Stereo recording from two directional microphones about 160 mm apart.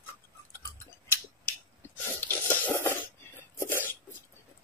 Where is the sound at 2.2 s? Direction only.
15° left (ahead or behind).